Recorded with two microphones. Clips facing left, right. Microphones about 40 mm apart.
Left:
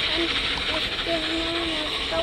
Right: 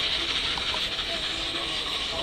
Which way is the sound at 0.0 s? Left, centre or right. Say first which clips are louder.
Left 4 dB; left.